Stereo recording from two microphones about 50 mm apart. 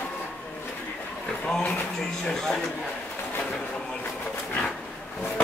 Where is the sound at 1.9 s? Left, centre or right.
Centre.